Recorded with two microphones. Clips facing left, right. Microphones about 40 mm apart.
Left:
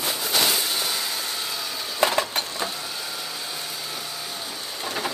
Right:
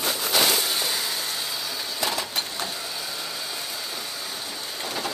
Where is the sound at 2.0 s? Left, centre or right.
Left.